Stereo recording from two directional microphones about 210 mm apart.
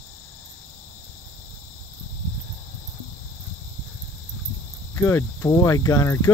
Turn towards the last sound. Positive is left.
turn(degrees=15)  # may be behind; listen again after turning